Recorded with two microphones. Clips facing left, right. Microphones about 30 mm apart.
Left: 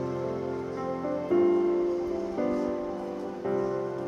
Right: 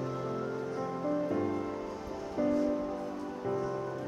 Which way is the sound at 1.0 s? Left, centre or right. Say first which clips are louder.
Left 8 dB; left.